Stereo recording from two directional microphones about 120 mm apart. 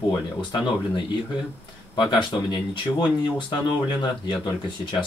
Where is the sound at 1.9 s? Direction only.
40° left (ahead or behind).